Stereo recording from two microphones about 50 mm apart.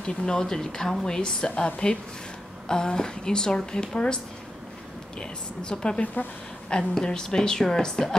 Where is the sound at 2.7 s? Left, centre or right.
Centre.